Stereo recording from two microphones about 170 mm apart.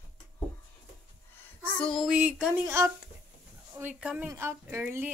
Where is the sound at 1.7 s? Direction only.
5° left (ahead or behind).